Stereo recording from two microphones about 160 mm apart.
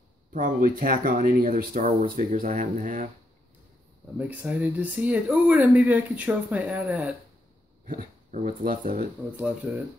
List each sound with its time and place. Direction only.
0.3 s speech: 60° right (ahead or behind)
4.2 s speech: 10° right (ahead or behind)
7.8 s speech: 55° right (ahead or behind)